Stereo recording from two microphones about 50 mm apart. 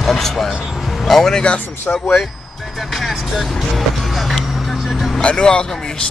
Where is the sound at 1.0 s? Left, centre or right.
Centre.